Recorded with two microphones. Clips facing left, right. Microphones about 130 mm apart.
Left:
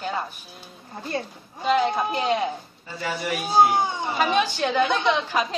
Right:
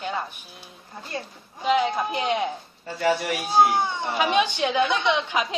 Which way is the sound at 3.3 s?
Centre (ahead or behind).